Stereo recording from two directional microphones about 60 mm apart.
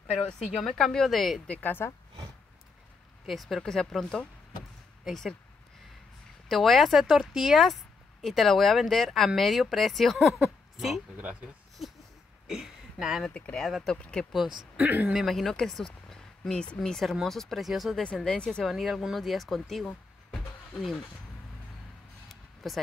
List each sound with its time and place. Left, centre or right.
0.2 s speech: centre
1.5 s speech: left
3.3 s speech: centre
6.5 s speech: centre
11.8 s a sound: centre
13.2 s speech: centre
14.8 s speech: right
15.1 s speech: centre
18.0 s speech: centre
18.7 s speech: centre
19.9 s vehicle: centre
22.3 s a sound: centre